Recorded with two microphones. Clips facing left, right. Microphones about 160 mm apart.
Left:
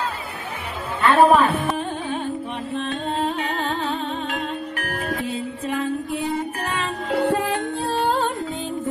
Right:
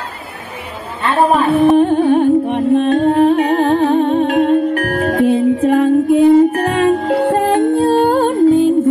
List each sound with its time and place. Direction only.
1.6 s music: 45° right (ahead or behind)
1.9 s music: 55° right (ahead or behind)